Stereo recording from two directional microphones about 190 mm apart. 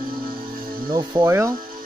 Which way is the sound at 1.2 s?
10° right (ahead or behind).